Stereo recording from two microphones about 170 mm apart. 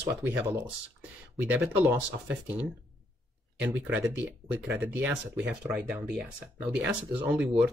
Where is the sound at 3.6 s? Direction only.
10° right (ahead or behind).